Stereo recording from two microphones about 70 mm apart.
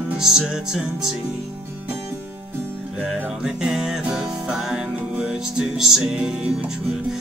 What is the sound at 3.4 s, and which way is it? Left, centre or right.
Music, centre.